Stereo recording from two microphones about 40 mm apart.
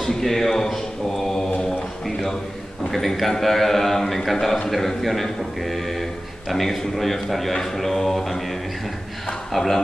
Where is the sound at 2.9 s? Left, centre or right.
Centre.